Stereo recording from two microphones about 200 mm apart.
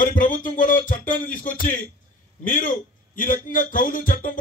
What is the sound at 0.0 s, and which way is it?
A man's voice, 40° left (ahead or behind).